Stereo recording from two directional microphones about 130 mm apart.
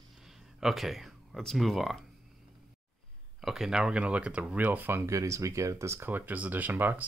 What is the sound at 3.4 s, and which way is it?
Speech, centre (ahead or behind).